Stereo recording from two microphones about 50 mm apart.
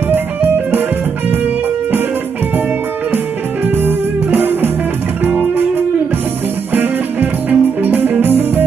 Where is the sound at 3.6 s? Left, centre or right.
Right.